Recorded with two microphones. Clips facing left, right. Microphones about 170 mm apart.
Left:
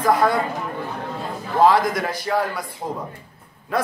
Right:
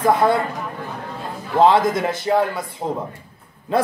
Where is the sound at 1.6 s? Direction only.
25° right (ahead or behind).